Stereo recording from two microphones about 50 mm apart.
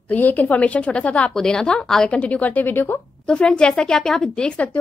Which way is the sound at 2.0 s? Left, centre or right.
Left.